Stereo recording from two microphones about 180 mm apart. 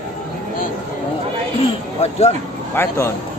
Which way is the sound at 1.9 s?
35° left (ahead or behind).